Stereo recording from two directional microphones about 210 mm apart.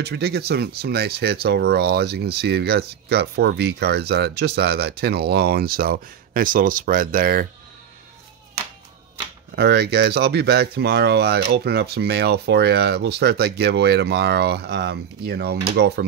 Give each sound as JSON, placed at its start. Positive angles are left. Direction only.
{"t": 0.0, "sound": "speech", "side_deg": -50}
{"t": 9.6, "sound": "speech", "side_deg": -50}